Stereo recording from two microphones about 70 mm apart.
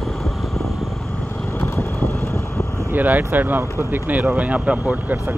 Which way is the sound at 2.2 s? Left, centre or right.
Left.